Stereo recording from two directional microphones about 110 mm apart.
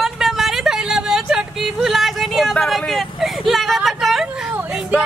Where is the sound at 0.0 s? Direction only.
5° right (ahead or behind).